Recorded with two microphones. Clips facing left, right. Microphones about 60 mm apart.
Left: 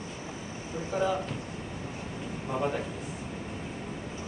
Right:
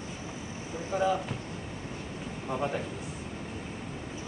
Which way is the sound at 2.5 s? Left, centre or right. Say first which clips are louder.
Left 1 dB; centre.